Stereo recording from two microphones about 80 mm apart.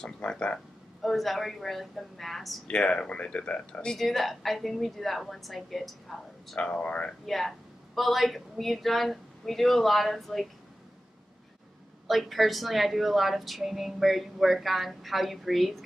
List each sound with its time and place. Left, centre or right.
0.0 s speech: centre
1.0 s speech: centre
2.7 s speech: centre
6.6 s speech: centre
7.2 s speech: centre
12.1 s speech: centre